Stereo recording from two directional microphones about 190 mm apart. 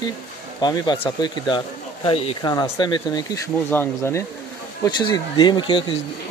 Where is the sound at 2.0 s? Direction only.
30° left (ahead or behind).